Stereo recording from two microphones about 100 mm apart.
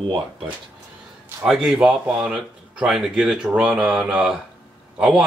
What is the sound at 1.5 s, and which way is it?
Speech, 5° right (ahead or behind).